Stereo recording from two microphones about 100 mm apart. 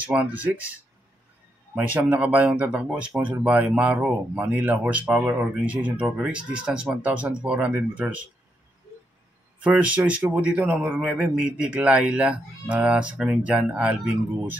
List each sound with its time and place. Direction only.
0.0 s speech: 15° right (ahead or behind)
1.8 s speech: 15° right (ahead or behind)
9.6 s speech: 15° right (ahead or behind)